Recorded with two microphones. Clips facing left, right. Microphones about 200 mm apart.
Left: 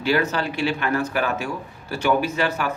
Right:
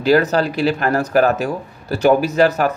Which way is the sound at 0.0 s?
40° right (ahead or behind).